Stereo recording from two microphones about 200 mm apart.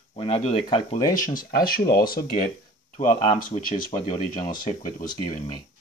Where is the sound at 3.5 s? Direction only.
25° left (ahead or behind).